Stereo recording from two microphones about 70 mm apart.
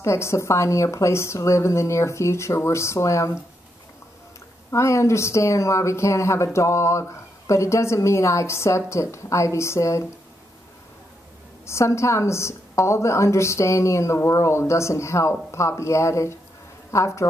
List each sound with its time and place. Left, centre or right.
0.0 s speech: left
4.6 s speech: left
11.6 s speech: left